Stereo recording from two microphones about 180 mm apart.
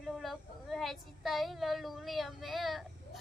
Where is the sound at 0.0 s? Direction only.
Centre (ahead or behind).